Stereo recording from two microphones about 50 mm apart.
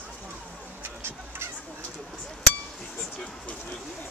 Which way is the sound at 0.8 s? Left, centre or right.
Right.